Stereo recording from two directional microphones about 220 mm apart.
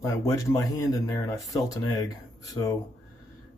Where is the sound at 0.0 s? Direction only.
15° left (ahead or behind).